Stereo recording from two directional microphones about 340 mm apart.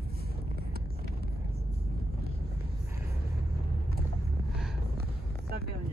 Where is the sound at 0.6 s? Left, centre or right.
Right.